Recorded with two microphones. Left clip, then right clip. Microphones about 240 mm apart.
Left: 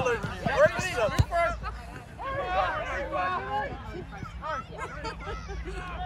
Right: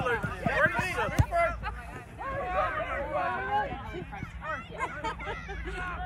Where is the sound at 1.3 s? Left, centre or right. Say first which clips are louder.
Right 2 dB; left.